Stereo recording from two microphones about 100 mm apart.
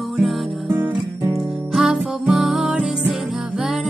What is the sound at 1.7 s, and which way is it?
Music, 10° right (ahead or behind).